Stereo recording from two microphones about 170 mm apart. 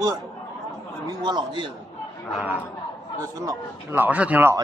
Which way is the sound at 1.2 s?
25° right (ahead or behind).